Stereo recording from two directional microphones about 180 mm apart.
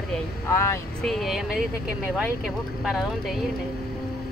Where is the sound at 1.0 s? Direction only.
Centre (ahead or behind).